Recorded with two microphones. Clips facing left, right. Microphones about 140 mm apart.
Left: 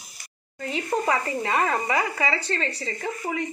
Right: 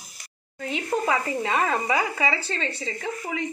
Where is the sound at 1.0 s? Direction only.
5° right (ahead or behind).